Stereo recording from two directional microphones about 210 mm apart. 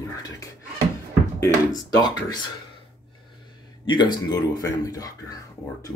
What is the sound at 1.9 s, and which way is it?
Speech, 20° left (ahead or behind).